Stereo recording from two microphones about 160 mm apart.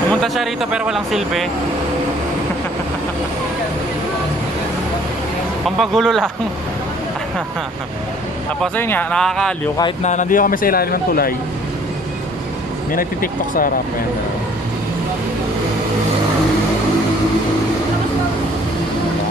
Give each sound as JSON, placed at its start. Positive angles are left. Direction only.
{"t": 0.1, "sound": "speech", "side_deg": 0}
{"t": 5.8, "sound": "speech", "side_deg": 0}
{"t": 8.7, "sound": "speech", "side_deg": 10}
{"t": 10.0, "sound": "speech", "side_deg": 50}
{"t": 12.9, "sound": "speech", "side_deg": 60}